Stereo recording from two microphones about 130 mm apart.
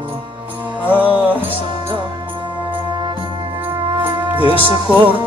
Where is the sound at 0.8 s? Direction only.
10° right (ahead or behind).